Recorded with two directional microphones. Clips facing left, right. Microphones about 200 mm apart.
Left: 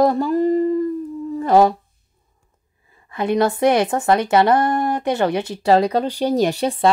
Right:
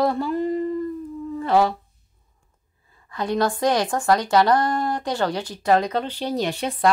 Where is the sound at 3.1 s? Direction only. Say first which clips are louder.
Left 4 dB; 20° left (ahead or behind).